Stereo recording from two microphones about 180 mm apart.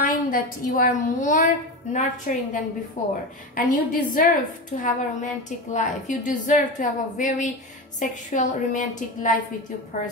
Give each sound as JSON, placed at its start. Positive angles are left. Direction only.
{"t": 0.0, "sound": "a woman's voice", "side_deg": 50}